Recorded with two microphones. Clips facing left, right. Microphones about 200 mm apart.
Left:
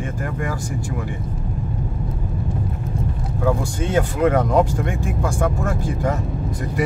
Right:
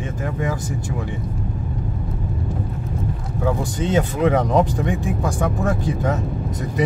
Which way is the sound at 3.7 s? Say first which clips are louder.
Even; 20° right (ahead or behind).